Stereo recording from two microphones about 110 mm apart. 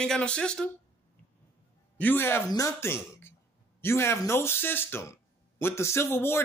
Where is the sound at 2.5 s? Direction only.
30° left (ahead or behind).